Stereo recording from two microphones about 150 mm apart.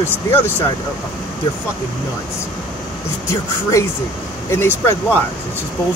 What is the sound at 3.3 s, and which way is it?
Speech, 20° left (ahead or behind).